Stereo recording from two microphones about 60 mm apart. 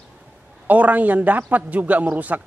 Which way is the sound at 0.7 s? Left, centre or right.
Right.